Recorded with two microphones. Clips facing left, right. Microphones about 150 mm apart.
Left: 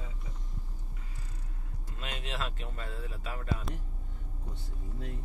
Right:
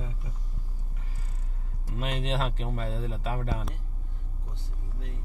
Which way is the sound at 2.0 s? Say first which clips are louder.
Right 8 dB; 30° right (ahead or behind).